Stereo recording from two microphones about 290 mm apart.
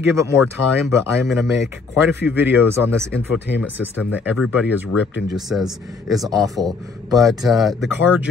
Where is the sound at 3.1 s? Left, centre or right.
Left.